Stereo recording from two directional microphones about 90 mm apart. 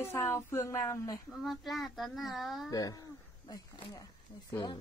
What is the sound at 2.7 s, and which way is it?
Speech, 45° left (ahead or behind).